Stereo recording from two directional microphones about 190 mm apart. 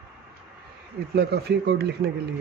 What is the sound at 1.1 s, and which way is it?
Speech, 60° right (ahead or behind).